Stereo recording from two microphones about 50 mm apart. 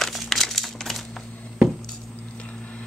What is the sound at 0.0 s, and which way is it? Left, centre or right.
Crumpling, centre.